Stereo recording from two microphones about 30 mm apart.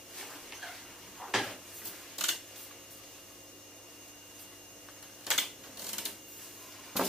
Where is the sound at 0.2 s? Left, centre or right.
Centre.